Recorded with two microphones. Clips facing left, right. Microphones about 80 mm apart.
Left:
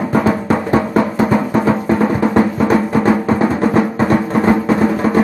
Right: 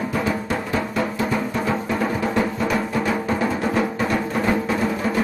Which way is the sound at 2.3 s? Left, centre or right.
Left.